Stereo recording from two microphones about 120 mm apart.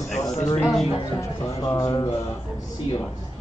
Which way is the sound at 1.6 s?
30° left (ahead or behind).